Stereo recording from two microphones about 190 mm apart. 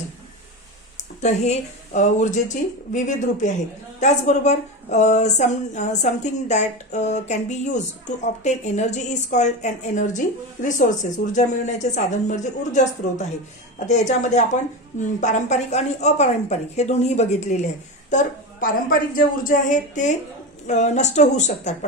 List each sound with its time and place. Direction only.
1.2 s a woman's voice: 35° left (ahead or behind)
13.8 s a woman's voice: 40° left (ahead or behind)